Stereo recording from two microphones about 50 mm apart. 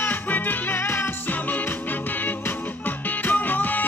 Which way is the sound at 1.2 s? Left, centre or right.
Left.